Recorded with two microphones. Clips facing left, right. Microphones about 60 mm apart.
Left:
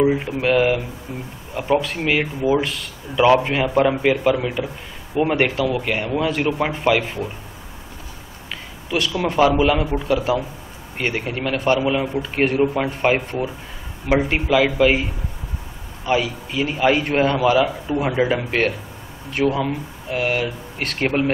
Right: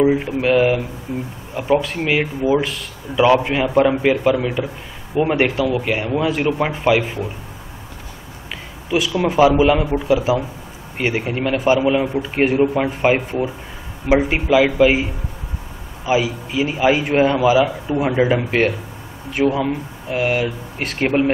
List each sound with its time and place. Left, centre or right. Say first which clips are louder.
0.0 s speech: right 2 dB; centre
8.9 s a man's voice: right 3 dB; centre
16.1 s a man's voice: right 2 dB; centre